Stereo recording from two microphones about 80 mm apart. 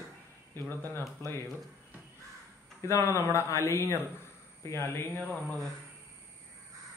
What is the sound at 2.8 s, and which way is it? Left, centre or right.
Speech, left.